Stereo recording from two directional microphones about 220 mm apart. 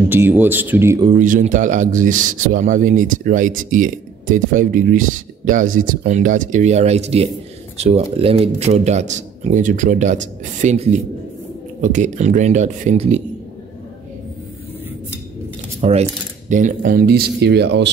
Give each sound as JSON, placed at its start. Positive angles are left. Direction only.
{"t": 0.1, "sound": "speech", "side_deg": -10}
{"t": 1.0, "sound": "speech", "side_deg": -35}
{"t": 15.8, "sound": "speech", "side_deg": -30}